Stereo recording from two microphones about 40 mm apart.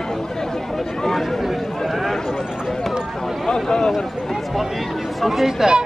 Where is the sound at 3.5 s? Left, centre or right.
Centre.